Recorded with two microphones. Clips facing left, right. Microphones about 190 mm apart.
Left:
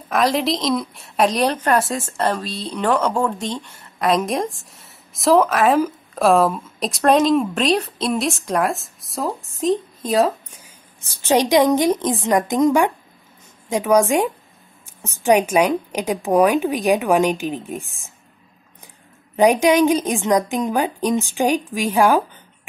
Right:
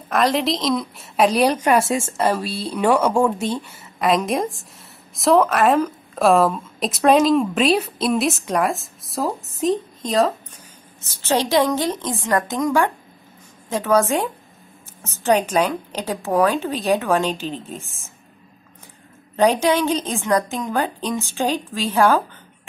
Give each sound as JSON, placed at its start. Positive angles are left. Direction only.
{"t": 0.1, "sound": "a woman's voice", "side_deg": 0}
{"t": 19.3, "sound": "a woman's voice", "side_deg": 15}